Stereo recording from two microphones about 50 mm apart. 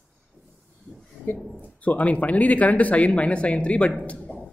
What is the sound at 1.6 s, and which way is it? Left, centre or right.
A man's voice, left.